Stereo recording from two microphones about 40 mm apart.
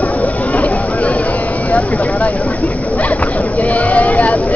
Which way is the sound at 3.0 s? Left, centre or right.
Left.